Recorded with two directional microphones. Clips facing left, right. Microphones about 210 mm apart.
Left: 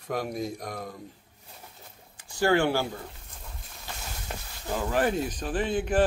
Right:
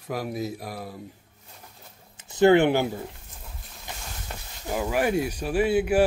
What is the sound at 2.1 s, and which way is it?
Speech, 20° right (ahead or behind).